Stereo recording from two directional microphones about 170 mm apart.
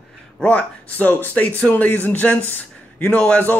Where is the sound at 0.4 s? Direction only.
10° left (ahead or behind).